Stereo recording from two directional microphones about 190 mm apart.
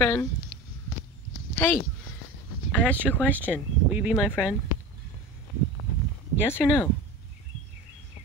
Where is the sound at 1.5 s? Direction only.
10° left (ahead or behind).